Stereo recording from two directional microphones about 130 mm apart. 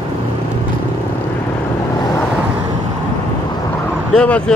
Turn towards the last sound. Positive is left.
turn(degrees=10)  # may be behind; listen again after turning